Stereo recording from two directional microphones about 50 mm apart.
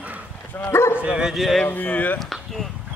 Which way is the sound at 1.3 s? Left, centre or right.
Centre.